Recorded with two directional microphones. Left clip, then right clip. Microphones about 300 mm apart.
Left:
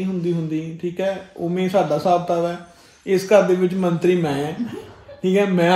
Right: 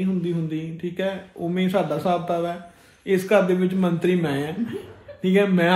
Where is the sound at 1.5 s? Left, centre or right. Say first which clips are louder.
Left 4 dB; centre.